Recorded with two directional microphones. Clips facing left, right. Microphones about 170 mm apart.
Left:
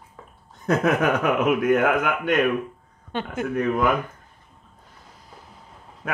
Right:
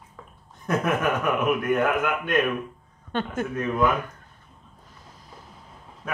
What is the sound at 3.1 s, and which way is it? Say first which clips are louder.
Speech: even; 10° left (ahead or behind).